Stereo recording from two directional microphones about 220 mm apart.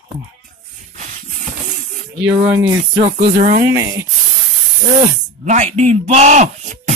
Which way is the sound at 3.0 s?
35° right (ahead or behind).